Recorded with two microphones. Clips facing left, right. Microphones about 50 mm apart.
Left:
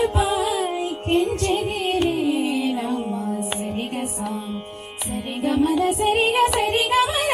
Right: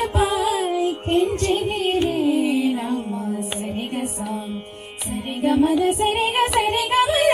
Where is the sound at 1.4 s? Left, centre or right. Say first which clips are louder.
Right 1 dB; right.